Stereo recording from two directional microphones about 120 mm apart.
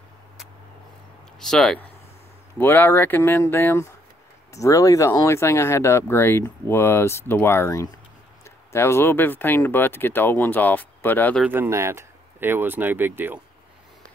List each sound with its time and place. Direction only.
1.4 s speech: 5° left (ahead or behind)
2.6 s speech: 15° left (ahead or behind)
11.4 s speech: 20° right (ahead or behind)